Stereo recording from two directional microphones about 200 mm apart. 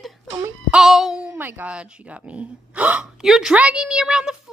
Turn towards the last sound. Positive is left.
turn(degrees=-5)  # may be behind; listen again after turning